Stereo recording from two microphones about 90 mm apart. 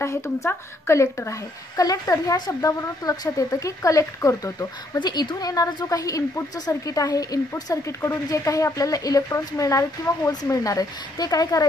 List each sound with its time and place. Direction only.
0.0 s speech: 30° left (ahead or behind)
1.8 s speech: 40° left (ahead or behind)